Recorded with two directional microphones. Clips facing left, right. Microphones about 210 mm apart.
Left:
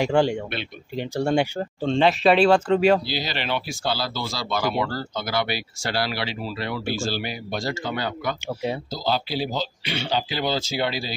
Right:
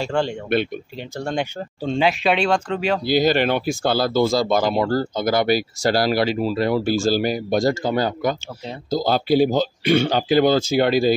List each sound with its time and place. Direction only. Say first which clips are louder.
0.0 s speech: left 2 dB; 15° left (ahead or behind)
1.8 s speech: even; 5° right (ahead or behind)
3.1 s speech: right 10 dB; 50° right (ahead or behind)